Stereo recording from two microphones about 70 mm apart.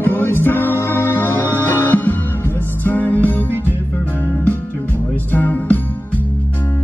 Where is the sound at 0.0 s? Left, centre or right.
Left.